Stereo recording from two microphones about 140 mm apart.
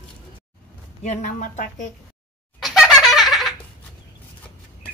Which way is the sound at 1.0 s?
60° left (ahead or behind).